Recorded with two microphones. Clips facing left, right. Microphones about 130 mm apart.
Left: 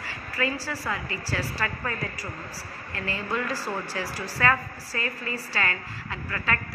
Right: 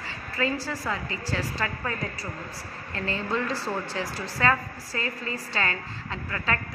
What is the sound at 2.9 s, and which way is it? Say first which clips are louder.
Speech: right 2 dB; 25° right (ahead or behind).